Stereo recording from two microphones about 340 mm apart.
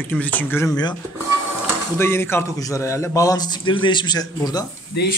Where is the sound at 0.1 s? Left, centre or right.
Centre.